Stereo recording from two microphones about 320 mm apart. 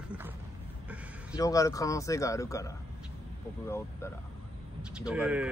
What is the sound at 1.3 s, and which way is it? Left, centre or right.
Speech, centre.